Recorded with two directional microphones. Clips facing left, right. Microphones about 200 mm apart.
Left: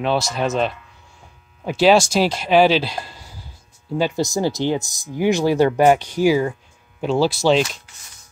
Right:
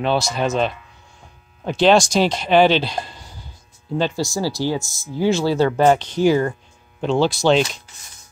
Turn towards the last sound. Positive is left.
turn(degrees=0)  # may be behind; listen again after turning